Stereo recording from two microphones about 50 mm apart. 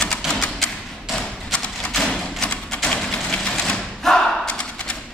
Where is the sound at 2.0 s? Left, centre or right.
Centre.